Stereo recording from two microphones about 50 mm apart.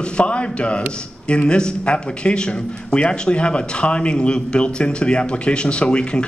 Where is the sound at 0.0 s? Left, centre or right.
Left.